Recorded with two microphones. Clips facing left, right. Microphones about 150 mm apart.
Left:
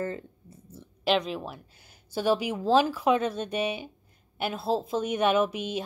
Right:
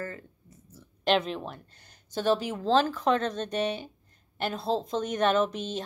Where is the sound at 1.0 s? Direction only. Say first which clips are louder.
Even; centre (ahead or behind).